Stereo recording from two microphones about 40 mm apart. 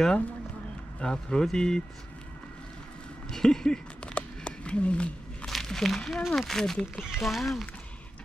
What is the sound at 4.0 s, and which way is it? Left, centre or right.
Crumpling, left.